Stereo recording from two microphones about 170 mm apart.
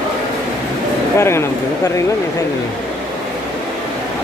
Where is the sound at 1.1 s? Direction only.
15° left (ahead or behind).